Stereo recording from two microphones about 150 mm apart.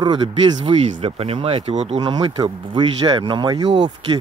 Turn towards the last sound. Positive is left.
turn(degrees=-30)  # may be behind; listen again after turning